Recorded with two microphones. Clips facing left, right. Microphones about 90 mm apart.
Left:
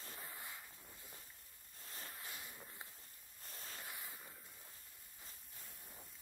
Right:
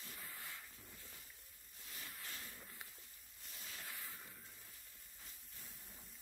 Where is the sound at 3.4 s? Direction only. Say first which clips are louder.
Left 2 dB; 40° left (ahead or behind).